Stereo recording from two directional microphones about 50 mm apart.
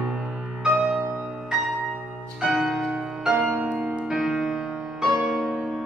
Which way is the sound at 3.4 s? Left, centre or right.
Right.